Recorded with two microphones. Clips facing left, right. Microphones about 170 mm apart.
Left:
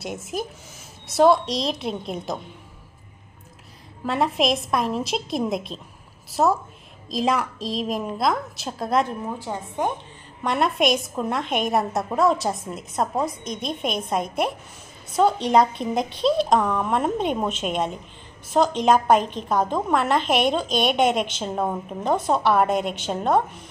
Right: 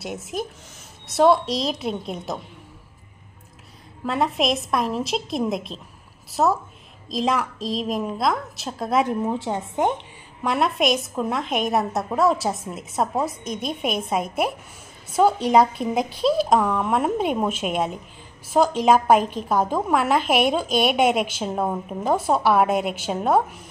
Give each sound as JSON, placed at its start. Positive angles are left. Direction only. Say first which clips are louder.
{"t": 0.0, "sound": "a woman's voice", "louder": "even", "side_deg": 0}
{"t": 4.0, "sound": "a woman's voice", "louder": "even", "side_deg": 0}
{"t": 9.0, "sound": "a woman's voice", "louder": "right 5 dB", "side_deg": -20}
{"t": 10.4, "sound": "a woman's voice", "louder": "even", "side_deg": 0}